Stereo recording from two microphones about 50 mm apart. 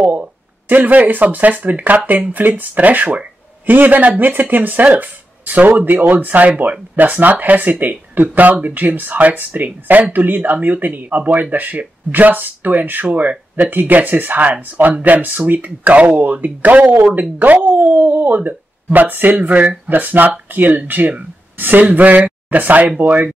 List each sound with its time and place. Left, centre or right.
0.0 s speech: right